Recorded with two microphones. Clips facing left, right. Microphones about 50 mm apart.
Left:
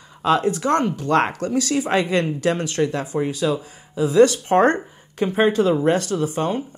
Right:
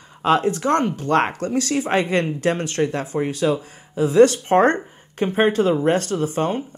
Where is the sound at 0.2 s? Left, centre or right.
Right.